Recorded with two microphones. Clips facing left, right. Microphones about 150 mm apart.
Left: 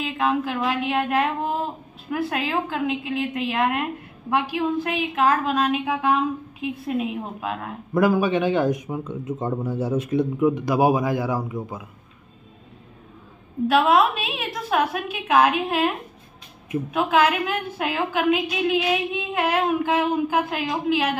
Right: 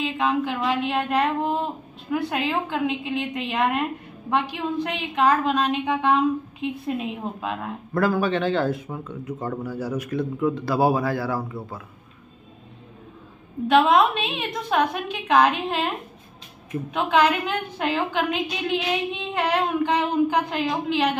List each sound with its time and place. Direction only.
0.0 s a woman's voice: centre (ahead or behind)
7.9 s a woman's voice: 15° left (ahead or behind)
13.7 s a woman's voice: 5° left (ahead or behind)
16.9 s a woman's voice: 5° left (ahead or behind)